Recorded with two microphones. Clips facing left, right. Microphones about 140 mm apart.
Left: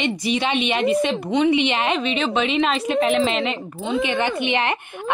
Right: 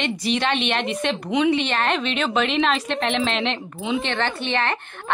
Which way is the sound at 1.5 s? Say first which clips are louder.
Left 2 dB; 15° left (ahead or behind).